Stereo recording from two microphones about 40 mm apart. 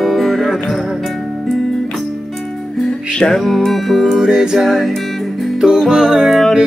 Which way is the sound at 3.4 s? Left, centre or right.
Centre.